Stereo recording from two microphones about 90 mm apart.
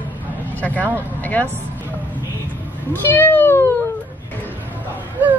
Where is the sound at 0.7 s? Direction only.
20° right (ahead or behind).